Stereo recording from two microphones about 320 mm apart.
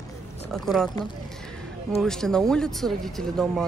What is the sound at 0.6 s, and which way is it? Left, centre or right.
Speech, centre.